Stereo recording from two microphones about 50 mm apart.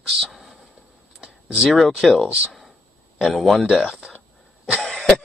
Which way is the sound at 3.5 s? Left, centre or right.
Right.